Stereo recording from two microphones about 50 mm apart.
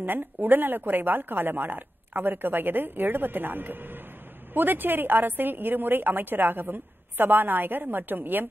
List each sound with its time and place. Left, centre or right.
0.0 s a woman's voice: right